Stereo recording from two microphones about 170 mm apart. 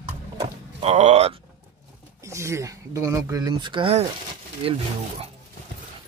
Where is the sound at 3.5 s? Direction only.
30° right (ahead or behind).